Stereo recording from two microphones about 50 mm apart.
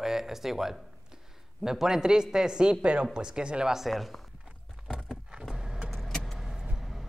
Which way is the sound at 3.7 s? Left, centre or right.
Centre.